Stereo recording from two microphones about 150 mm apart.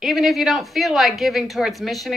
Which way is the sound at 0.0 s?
Centre (ahead or behind).